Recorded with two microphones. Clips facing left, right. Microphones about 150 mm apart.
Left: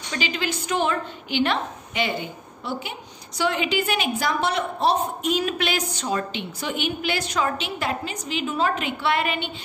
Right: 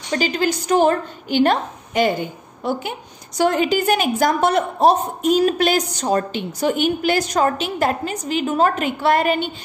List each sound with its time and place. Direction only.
0.1 s a woman's voice: 40° right (ahead or behind)